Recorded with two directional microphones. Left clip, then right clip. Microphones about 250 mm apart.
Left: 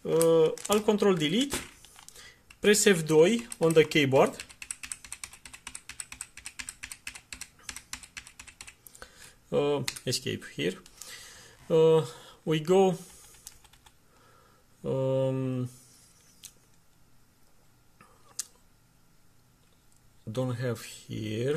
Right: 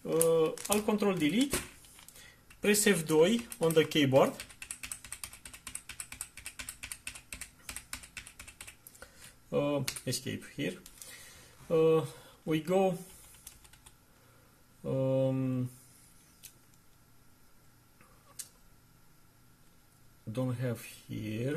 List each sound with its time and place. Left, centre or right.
0.0 s typewriter: left
2.6 s speech: left
9.0 s computer keyboard: left
11.0 s a sound: left
11.7 s speech: left
14.8 s speech: left
20.3 s speech: left